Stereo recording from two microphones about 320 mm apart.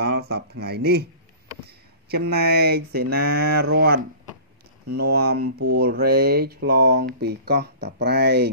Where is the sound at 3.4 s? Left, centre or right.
Right.